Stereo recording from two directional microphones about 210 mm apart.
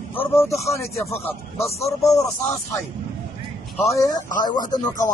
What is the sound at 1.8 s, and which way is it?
Speech, 15° left (ahead or behind).